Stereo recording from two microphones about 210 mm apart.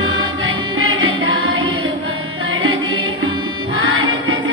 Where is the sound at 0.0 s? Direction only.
75° right (ahead or behind).